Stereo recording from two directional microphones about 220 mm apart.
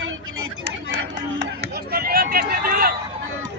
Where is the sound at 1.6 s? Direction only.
45° right (ahead or behind).